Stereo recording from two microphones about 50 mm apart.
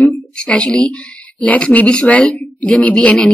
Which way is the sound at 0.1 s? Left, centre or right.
Centre.